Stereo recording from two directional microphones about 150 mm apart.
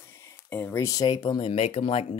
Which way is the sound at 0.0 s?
15° left (ahead or behind).